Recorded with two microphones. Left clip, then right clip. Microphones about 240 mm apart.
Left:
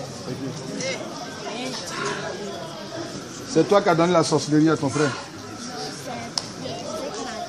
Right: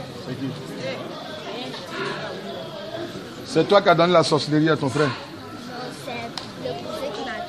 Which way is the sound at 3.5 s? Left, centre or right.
Right.